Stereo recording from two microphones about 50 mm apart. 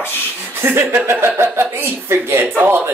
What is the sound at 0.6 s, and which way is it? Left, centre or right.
Speech, right.